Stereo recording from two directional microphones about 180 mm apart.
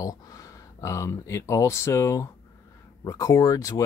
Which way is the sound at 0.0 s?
20° left (ahead or behind).